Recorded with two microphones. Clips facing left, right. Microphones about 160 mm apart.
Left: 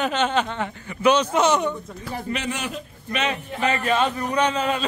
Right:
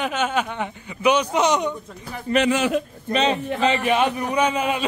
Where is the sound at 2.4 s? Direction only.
90° right.